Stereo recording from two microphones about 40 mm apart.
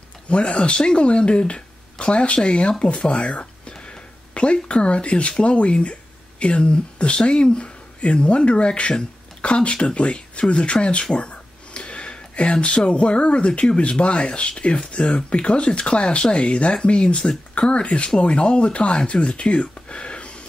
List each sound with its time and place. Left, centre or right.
0.3 s speech: left